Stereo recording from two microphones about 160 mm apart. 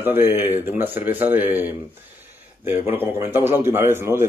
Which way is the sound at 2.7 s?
15° right (ahead or behind).